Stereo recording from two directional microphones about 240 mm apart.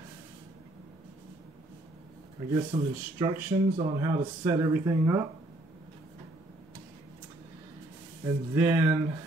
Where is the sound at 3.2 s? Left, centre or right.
Centre.